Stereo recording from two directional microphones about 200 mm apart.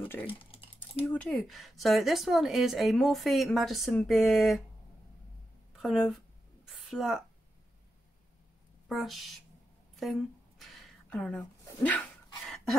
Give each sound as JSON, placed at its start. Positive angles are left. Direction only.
{"t": 0.2, "sound": "typing", "side_deg": 25}
{"t": 1.0, "sound": "speech", "side_deg": 5}
{"t": 5.8, "sound": "speech", "side_deg": 0}
{"t": 6.7, "sound": "a sound", "side_deg": 0}
{"t": 8.8, "sound": "speech", "side_deg": 0}
{"t": 9.9, "sound": "a sound", "side_deg": 0}